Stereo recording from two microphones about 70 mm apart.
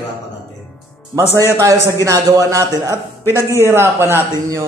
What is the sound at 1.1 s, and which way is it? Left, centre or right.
A man's voice, right.